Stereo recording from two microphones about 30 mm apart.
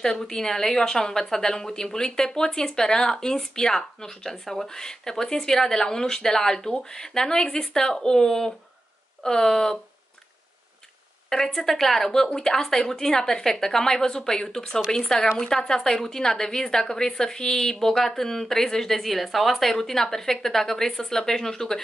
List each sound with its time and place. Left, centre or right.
0.0 s speech: left
11.2 s a woman's voice: centre